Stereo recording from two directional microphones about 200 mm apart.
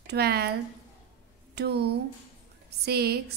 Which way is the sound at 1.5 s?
55° right (ahead or behind).